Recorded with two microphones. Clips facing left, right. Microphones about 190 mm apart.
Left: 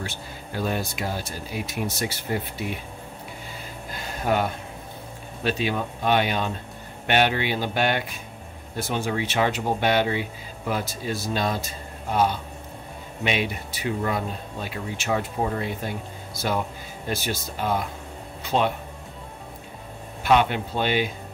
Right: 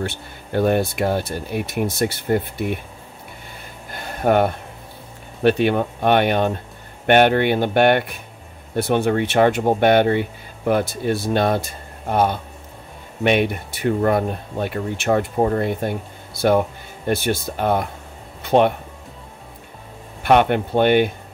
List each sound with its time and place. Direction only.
0.0 s speech: 60° right (ahead or behind)
3.9 s a sound: 60° right (ahead or behind)
5.4 s speech: 60° right (ahead or behind)
18.4 s music: 55° right (ahead or behind)
20.2 s speech: 55° right (ahead or behind)